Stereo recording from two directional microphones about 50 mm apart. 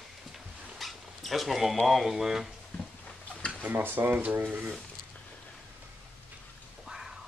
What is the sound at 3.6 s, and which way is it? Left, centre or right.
Speech, right.